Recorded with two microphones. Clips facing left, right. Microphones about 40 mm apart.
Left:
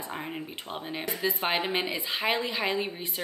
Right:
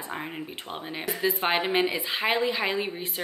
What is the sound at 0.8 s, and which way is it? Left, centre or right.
A woman's voice, centre.